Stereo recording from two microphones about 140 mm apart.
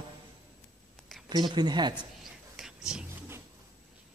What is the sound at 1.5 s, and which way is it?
Speech, 30° right (ahead or behind).